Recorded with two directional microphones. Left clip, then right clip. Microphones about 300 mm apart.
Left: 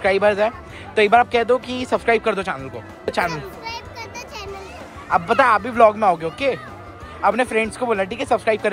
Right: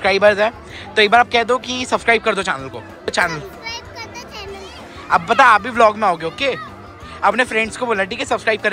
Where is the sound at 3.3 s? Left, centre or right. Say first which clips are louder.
Right 2 dB; left.